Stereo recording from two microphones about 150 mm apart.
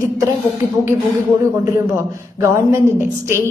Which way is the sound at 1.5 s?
20° right (ahead or behind).